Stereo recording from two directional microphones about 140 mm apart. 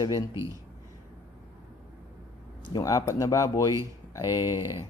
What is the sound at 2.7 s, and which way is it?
Speech, 25° left (ahead or behind).